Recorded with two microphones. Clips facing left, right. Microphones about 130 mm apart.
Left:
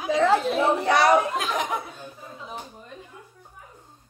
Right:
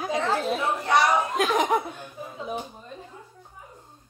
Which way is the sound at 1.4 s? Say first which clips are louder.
Right 5 dB; 50° right (ahead or behind).